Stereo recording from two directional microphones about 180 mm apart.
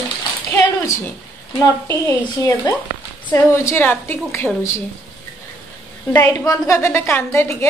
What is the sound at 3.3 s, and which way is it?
A woman's voice, 15° left (ahead or behind).